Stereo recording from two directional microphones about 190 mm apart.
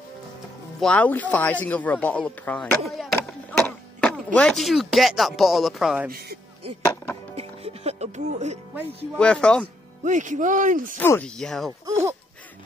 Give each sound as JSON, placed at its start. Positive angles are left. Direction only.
{"t": 0.7, "sound": "speech", "side_deg": 5}
{"t": 7.3, "sound": "music", "side_deg": -30}
{"t": 9.1, "sound": "speech", "side_deg": 5}
{"t": 10.0, "sound": "speech", "side_deg": -40}
{"t": 11.0, "sound": "speech", "side_deg": 10}
{"t": 11.8, "sound": "speech", "side_deg": -15}